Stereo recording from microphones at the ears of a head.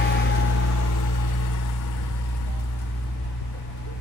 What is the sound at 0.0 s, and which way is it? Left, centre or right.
Vehicle, left.